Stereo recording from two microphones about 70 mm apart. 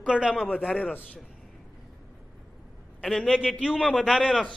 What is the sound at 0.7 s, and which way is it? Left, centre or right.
Speech, left.